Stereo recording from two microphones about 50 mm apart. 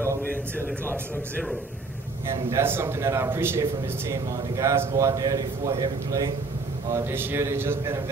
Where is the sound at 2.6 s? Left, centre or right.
Right.